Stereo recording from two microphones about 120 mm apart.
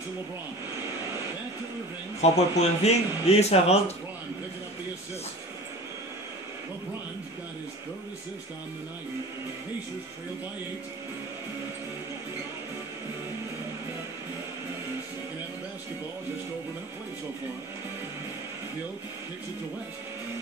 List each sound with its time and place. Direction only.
2.2 s speech: 65° left (ahead or behind)